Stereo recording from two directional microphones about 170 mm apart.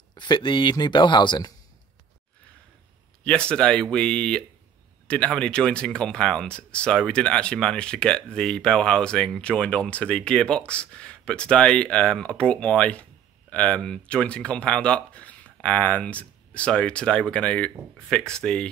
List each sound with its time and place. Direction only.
0.1 s speech: 25° left (ahead or behind)
3.3 s speech: 5° left (ahead or behind)